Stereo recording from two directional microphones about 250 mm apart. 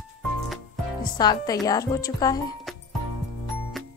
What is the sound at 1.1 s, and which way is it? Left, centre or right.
Speech, centre.